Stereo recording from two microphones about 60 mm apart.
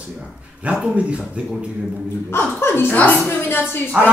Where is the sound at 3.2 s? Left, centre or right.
Left.